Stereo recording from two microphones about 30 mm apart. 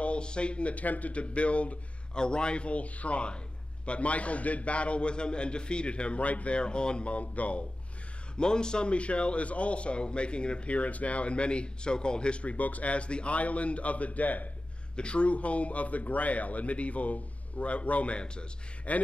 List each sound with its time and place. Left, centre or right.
0.0 s speech: left
1.2 s speech: left
2.1 s speech: left
6.6 s speech: left
8.4 s speech: left
8.9 s speech: left
12.5 s speech: left
15.0 s speech: left
18.1 s speech: left
18.9 s speech: left